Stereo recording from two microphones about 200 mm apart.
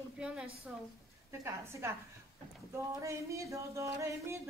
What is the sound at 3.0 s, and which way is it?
Speech, 15° right (ahead or behind).